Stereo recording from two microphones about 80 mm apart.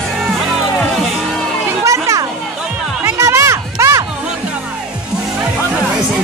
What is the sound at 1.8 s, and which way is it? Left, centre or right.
Children playing, right.